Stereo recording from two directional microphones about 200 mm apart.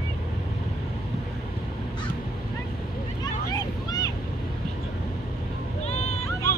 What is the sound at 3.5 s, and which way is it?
Vehicle, 20° left (ahead or behind).